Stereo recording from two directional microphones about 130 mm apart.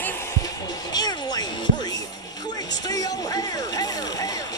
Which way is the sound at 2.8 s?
30° left (ahead or behind).